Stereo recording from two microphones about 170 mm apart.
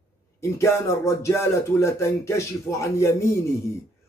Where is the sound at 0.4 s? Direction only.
15° left (ahead or behind).